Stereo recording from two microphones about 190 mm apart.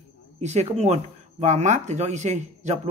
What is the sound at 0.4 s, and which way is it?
Speech, 35° right (ahead or behind).